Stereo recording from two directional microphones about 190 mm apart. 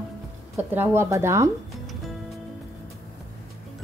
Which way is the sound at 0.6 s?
10° right (ahead or behind).